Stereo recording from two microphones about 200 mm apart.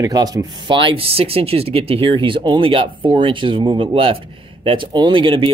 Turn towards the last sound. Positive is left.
turn(degrees=-25)  # may be behind; listen again after turning